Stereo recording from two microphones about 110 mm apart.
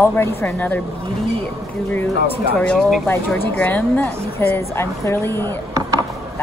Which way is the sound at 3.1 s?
15° left (ahead or behind).